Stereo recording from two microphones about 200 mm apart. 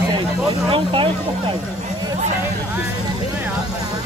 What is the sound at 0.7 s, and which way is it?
Speech, 25° right (ahead or behind).